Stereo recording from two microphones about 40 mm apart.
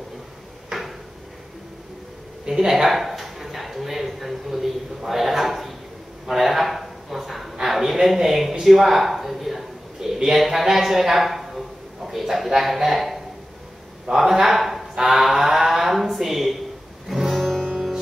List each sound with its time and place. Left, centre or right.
0.7 s cupboard open or close: centre
2.4 s a man's voice: centre
2.9 s speech: centre
6.2 s a sound: centre
7.5 s a man's voice: centre
8.6 s a sound: centre
9.9 s a sound: centre
10.3 s a man's voice: centre
17.1 s music: centre
17.4 s music: centre